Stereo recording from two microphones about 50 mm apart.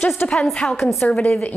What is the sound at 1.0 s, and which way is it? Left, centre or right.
Speech, left.